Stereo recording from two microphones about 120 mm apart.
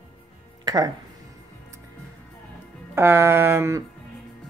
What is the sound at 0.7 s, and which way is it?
Speech, 35° right (ahead or behind).